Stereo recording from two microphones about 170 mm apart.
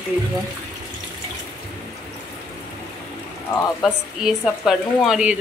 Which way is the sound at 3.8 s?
5° right (ahead or behind).